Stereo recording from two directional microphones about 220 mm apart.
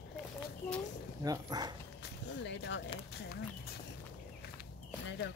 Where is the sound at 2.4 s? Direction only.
55° left (ahead or behind).